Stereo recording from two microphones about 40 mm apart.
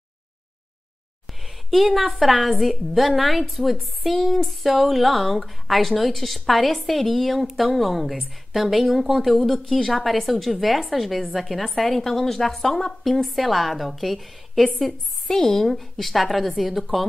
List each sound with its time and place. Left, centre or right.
1.4 s a sound: centre
2.0 s a woman's voice: centre
14.9 s a woman's voice: centre